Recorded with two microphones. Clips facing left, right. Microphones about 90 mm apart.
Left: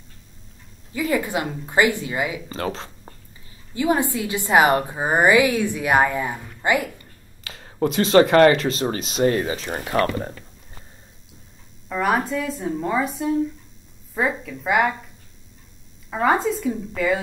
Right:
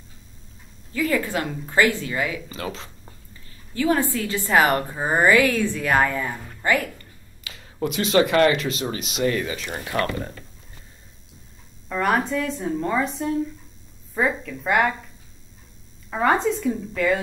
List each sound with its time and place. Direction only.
0.9 s a woman's voice: 15° left (ahead or behind)
2.5 s speech: 40° left (ahead or behind)
3.7 s a woman's voice: 15° left (ahead or behind)
7.4 s speech: 40° left (ahead or behind)
11.9 s speech: 5° left (ahead or behind)
16.1 s speech: 5° left (ahead or behind)